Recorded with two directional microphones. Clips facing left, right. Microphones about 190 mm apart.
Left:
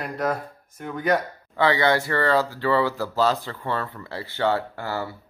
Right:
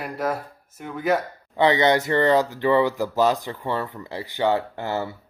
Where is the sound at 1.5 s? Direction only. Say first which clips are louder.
Right 2 dB; 20° right (ahead or behind).